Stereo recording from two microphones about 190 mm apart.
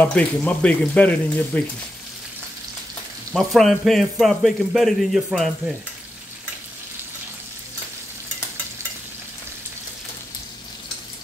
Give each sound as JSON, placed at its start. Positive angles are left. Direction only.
{"t": 0.0, "sound": "speech", "side_deg": 5}
{"t": 3.3, "sound": "speech", "side_deg": 0}